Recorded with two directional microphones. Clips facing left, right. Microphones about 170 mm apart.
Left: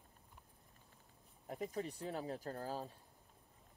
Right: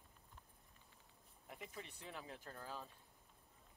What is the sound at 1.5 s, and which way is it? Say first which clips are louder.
Speech: left 11 dB; 40° left (ahead or behind).